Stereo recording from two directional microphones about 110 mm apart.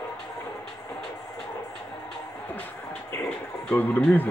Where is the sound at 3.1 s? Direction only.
15° left (ahead or behind).